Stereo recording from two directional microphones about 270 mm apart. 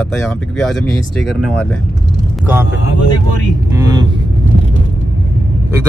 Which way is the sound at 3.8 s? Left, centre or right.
Centre.